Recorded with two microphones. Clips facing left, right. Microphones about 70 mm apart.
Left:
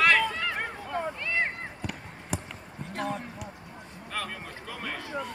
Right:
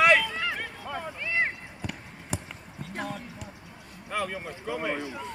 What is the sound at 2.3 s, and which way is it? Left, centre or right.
Basketball bounce, centre.